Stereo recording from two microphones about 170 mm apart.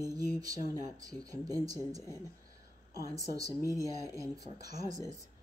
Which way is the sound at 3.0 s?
20° right (ahead or behind).